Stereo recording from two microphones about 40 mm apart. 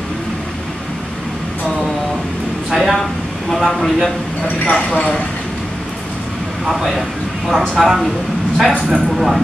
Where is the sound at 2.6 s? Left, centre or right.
Centre.